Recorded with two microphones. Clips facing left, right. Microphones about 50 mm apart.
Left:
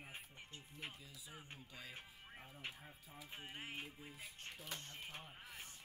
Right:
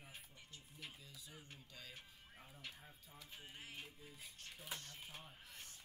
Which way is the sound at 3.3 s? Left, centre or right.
Left.